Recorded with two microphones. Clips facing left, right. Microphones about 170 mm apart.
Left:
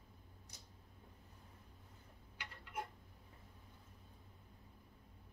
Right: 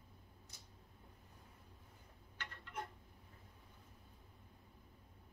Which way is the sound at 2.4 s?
10° left (ahead or behind).